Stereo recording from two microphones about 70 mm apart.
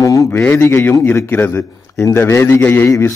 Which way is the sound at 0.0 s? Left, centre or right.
Left.